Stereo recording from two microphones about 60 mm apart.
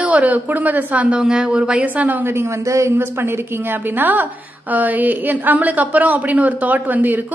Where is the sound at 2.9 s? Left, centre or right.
Right.